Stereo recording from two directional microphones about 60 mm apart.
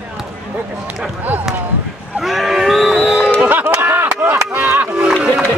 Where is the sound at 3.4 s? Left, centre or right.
Right.